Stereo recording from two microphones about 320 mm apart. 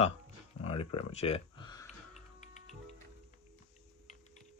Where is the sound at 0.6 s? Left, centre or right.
Centre.